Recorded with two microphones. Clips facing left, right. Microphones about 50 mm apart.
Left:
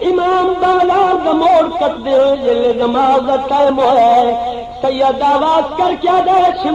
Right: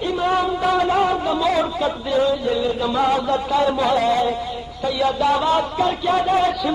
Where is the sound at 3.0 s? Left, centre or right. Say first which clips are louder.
Left 6 dB; left.